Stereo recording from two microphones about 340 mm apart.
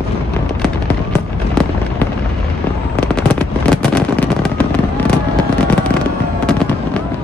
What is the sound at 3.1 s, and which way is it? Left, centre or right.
Fireworks, centre.